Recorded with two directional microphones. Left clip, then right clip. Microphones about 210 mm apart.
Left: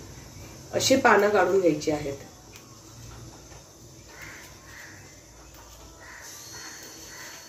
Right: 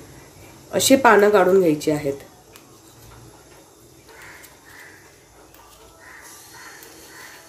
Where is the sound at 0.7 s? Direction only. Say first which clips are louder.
Right 6 dB; 50° right (ahead or behind).